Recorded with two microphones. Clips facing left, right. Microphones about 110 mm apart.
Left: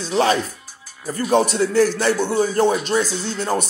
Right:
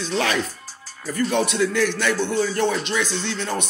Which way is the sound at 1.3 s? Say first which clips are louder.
Left 6 dB; 40° left (ahead or behind).